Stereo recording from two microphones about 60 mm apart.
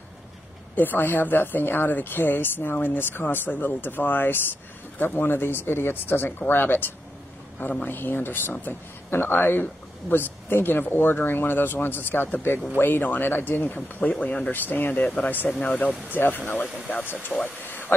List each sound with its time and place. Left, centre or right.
0.7 s speech: left
14.2 s speech: centre
14.5 s speech: left
17.6 s a sound: left